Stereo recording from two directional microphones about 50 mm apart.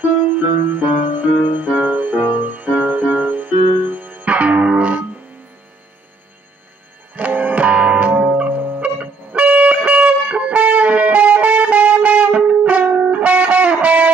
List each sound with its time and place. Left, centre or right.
0.0 s music: right
7.2 s music: right